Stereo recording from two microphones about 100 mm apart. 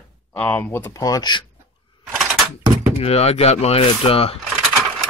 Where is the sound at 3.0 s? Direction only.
90° left.